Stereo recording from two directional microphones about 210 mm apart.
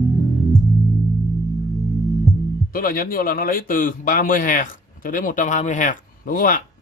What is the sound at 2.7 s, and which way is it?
A man's voice, 40° left (ahead or behind).